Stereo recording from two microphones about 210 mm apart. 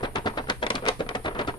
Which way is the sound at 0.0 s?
20° left (ahead or behind).